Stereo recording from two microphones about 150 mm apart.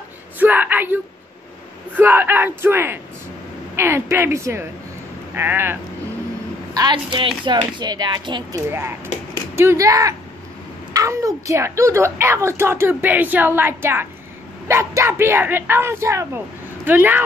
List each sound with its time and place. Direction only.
0.4 s whimper: 10° right (ahead or behind)
2.0 s a woman's voice: 15° right (ahead or behind)
6.7 s speech: 30° right (ahead or behind)
8.6 s a woman's voice: 15° right (ahead or behind)